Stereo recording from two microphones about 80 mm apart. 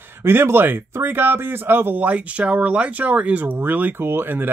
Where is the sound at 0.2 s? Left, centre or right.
Right.